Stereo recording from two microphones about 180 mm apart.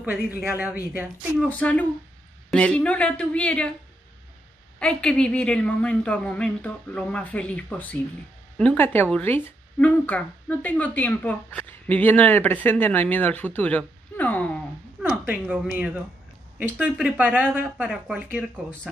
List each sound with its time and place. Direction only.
0.0 s speech: 10° right (ahead or behind)
1.6 s speech: 10° left (ahead or behind)
4.7 s speech: 5° left (ahead or behind)
15.0 s speech: 10° right (ahead or behind)